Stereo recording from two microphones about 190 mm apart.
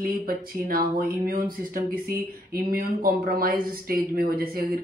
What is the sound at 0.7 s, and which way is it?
Speech, 50° right (ahead or behind).